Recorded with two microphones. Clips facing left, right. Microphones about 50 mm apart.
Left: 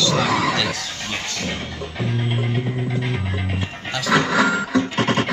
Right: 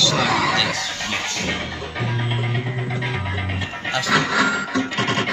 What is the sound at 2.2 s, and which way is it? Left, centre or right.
Music, centre.